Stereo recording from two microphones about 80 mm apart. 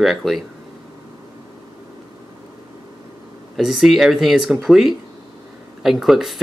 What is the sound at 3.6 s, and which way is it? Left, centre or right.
Speech, centre.